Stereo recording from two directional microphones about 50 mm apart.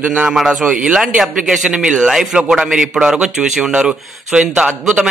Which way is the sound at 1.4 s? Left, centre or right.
Centre.